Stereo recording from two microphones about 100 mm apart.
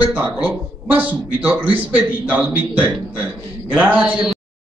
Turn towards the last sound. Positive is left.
turn(degrees=-15)  # may be behind; listen again after turning